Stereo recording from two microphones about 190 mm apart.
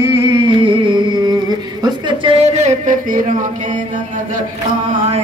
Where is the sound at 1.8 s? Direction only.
25° right (ahead or behind); by 3.2 s 45° right (ahead or behind).